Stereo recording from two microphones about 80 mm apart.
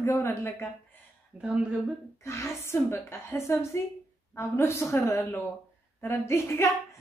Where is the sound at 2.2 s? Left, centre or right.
Left.